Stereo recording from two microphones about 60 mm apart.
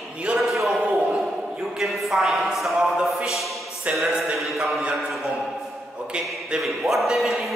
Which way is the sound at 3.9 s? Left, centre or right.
Right.